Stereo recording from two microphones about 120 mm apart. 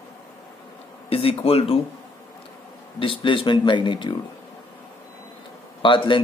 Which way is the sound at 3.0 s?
45° left (ahead or behind).